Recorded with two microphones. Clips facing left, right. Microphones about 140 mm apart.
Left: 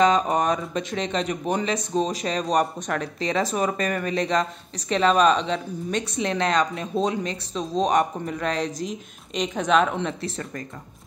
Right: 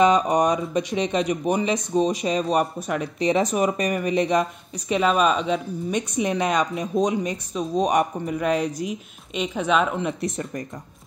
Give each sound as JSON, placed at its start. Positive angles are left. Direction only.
{"t": 0.0, "sound": "speech", "side_deg": -15}
{"t": 3.2, "sound": "speech", "side_deg": -20}
{"t": 10.2, "sound": "speech", "side_deg": -20}